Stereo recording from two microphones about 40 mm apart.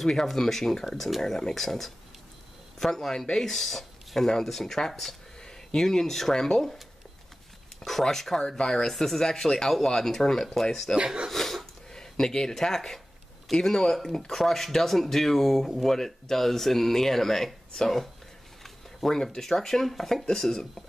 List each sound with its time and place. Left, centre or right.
0.0 s speech: centre
8.0 s speech: centre
11.2 s a sound: centre
11.9 s speech: centre